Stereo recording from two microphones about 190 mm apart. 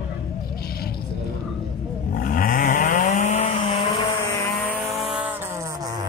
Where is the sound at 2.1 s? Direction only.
45° left (ahead or behind).